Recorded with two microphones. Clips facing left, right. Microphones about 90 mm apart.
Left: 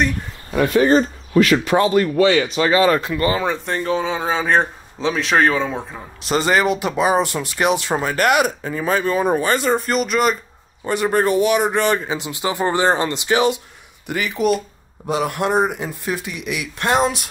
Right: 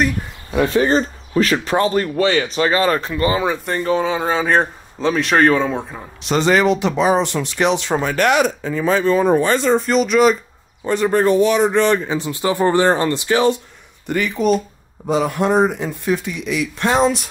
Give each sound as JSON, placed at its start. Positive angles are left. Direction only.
{"t": 0.7, "sound": "speech", "side_deg": -35}
{"t": 3.3, "sound": "speech", "side_deg": -15}
{"t": 3.6, "sound": "speech", "side_deg": 0}